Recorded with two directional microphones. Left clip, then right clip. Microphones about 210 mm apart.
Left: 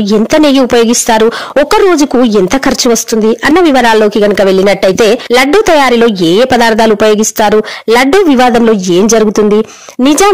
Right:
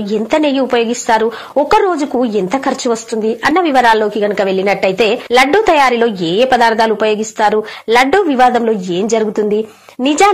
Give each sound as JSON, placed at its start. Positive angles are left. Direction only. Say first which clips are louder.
{"t": 0.1, "sound": "speech", "louder": "left 6 dB", "side_deg": 50}